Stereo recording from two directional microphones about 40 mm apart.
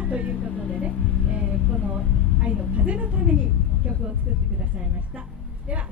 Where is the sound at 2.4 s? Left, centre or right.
Right.